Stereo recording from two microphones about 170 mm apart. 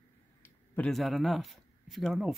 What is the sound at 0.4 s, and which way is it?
Speech, 5° left (ahead or behind).